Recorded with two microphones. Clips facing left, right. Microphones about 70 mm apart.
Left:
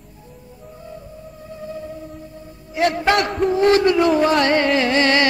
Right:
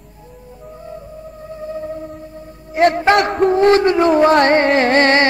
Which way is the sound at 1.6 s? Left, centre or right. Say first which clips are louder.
Right 6 dB; right.